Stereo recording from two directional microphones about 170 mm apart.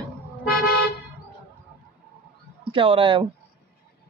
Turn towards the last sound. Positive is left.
turn(degrees=-30)  # may be behind; listen again after turning